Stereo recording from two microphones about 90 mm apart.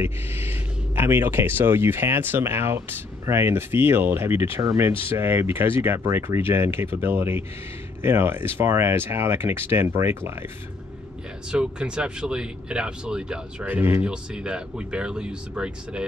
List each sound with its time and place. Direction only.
0.0 s speech: 25° right (ahead or behind)
11.5 s speech: 10° right (ahead or behind)
13.7 s speech: 25° right (ahead or behind)
14.0 s speech: 10° right (ahead or behind)